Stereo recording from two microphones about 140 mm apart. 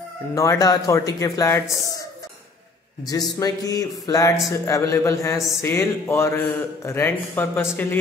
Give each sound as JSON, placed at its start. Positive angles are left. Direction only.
{"t": 0.3, "sound": "speech", "side_deg": 20}
{"t": 3.1, "sound": "speech", "side_deg": 25}